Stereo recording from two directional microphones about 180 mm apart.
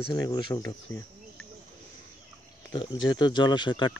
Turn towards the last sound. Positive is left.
turn(degrees=25)  # may be behind; listen again after turning